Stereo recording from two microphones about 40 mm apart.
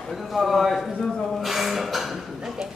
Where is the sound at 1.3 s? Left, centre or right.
Centre.